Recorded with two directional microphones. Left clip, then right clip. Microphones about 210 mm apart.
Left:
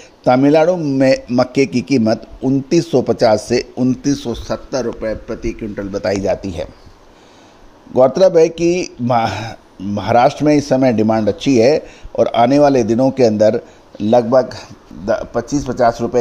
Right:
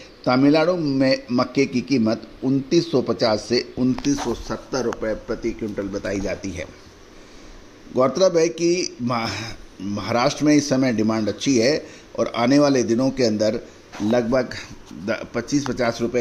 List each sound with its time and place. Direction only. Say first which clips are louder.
0.2 s a man's voice: left 6 dB; 45° left (ahead or behind)
7.9 s a man's voice: left 7 dB; 35° left (ahead or behind)
14.5 s speech: left 2 dB; 15° left (ahead or behind)